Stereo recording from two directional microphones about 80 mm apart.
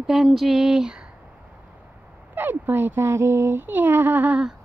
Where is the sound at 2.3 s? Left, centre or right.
Right.